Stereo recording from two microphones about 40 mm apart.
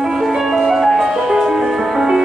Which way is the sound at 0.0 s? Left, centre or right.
Centre.